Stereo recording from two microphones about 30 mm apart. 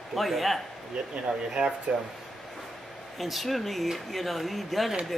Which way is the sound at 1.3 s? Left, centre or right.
Right.